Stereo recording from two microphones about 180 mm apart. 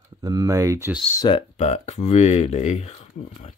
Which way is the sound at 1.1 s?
25° left (ahead or behind).